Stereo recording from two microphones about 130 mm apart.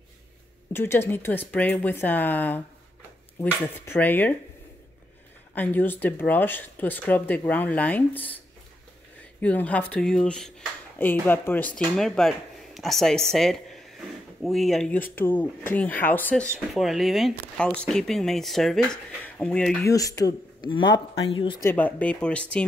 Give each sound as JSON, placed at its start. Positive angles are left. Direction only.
{"t": 0.7, "sound": "speech", "side_deg": 15}
{"t": 5.5, "sound": "speech", "side_deg": 15}
{"t": 9.4, "sound": "speech", "side_deg": 10}
{"t": 16.7, "sound": "speech", "side_deg": 0}
{"t": 19.8, "sound": "speech", "side_deg": 25}
{"t": 20.7, "sound": "speech", "side_deg": 40}
{"t": 21.6, "sound": "speech", "side_deg": 15}